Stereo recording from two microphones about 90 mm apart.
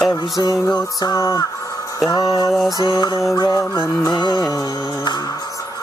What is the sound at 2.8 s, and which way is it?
Music, 50° left (ahead or behind).